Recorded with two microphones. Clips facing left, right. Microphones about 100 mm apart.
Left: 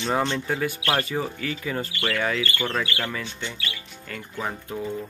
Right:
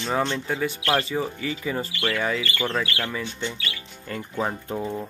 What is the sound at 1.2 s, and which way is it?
Speech, 15° right (ahead or behind).